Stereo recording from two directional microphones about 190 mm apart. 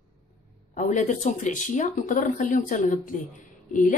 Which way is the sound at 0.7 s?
40° left (ahead or behind).